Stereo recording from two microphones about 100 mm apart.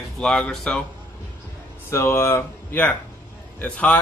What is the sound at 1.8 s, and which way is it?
Speech, 25° left (ahead or behind).